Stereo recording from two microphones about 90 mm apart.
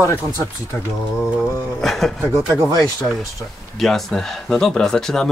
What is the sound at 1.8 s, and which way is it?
Speech, 5° left (ahead or behind).